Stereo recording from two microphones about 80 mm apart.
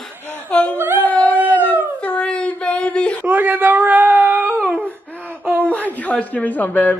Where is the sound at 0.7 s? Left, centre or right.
Right.